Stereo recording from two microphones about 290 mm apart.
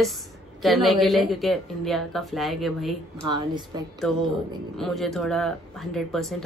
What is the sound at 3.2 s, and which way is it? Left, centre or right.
Speech, centre.